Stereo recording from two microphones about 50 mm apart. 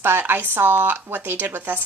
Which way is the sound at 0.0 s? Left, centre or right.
Right.